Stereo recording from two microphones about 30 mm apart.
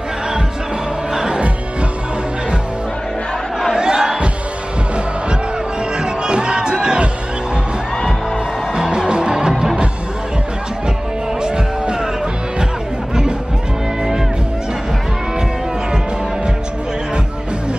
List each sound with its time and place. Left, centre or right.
1.1 s music: right
3.7 s crowd: right
5.9 s crowd: right
8.7 s music: right
11.4 s music: right